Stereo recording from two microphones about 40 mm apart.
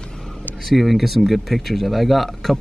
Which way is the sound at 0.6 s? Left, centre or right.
Centre.